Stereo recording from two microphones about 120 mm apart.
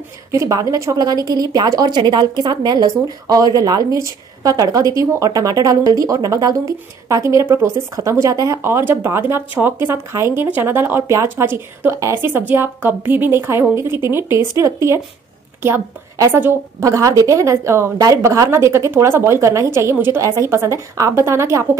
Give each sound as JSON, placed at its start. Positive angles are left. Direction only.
{"t": 0.3, "sound": "speech", "side_deg": -25}